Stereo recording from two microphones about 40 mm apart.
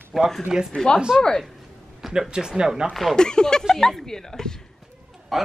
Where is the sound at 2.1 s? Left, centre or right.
Centre.